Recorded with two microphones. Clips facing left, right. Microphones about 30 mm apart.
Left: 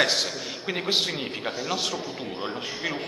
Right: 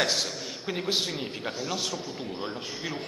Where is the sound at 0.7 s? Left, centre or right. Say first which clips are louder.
Left 3 dB; left.